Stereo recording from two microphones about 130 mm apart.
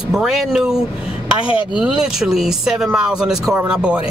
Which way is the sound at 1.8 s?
5° right (ahead or behind).